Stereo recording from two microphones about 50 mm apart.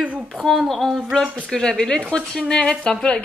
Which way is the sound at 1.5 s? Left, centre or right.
Centre.